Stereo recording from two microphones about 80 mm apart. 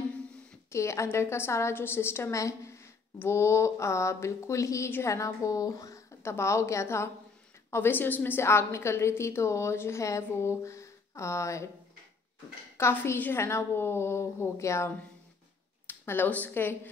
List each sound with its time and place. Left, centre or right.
0.7 s a woman's voice: left
12.7 s a woman's voice: left
15.9 s speech: left